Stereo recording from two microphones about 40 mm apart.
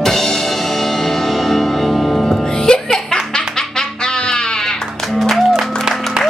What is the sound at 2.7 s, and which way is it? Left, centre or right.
Music, left.